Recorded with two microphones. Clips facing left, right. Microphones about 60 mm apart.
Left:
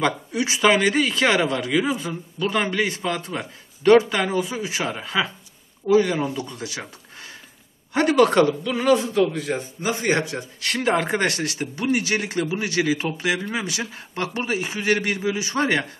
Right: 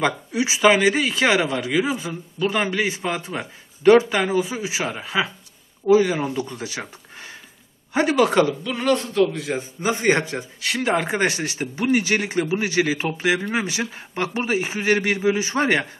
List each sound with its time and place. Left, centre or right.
0.0 s speech: centre
7.9 s a man's voice: centre
9.8 s a man's voice: right
10.6 s a man's voice: centre
11.1 s speech: centre